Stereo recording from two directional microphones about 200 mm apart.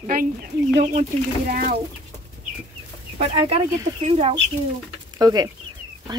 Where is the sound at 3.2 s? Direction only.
30° right (ahead or behind).